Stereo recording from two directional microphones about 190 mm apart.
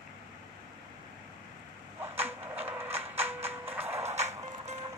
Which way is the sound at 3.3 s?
30° right (ahead or behind).